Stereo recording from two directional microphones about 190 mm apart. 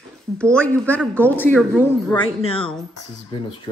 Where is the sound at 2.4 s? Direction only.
30° left (ahead or behind).